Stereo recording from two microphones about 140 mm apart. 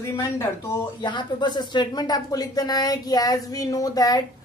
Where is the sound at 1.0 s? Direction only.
30° left (ahead or behind).